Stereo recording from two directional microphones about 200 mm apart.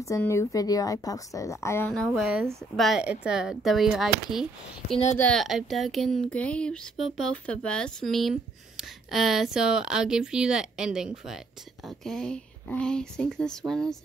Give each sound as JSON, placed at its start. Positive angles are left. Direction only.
{"t": 0.0, "sound": "speech", "side_deg": 15}
{"t": 4.9, "sound": "speech", "side_deg": 35}
{"t": 5.2, "sound": "speech", "side_deg": 0}